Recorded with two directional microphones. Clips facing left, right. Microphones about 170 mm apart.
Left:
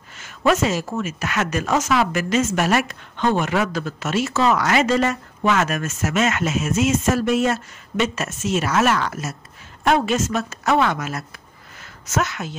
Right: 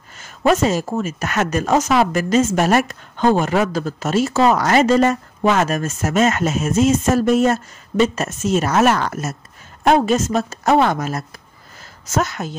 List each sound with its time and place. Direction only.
0.4 s speech: 35° right (ahead or behind)